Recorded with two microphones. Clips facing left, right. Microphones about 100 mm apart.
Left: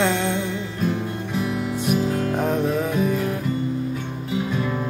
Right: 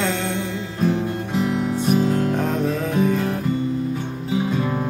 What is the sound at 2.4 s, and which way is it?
Music, 15° left (ahead or behind).